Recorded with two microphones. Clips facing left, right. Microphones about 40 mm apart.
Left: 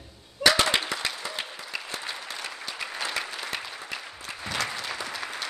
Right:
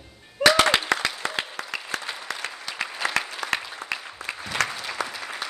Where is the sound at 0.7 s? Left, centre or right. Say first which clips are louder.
Right 5 dB; right.